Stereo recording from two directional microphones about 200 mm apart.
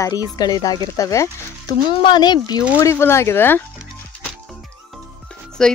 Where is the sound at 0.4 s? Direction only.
20° left (ahead or behind).